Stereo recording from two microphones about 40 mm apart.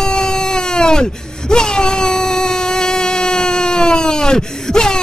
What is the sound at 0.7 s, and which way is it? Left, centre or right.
Speech, centre.